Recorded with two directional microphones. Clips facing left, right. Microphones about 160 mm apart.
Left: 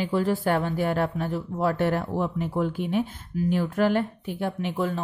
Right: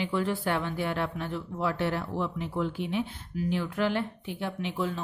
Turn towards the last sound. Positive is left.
turn(degrees=50)  # may be behind; listen again after turning